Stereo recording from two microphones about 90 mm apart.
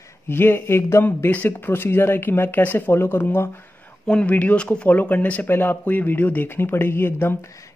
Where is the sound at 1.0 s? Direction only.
20° left (ahead or behind).